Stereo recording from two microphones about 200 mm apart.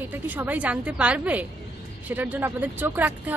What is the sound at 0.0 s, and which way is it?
Speech, 10° right (ahead or behind).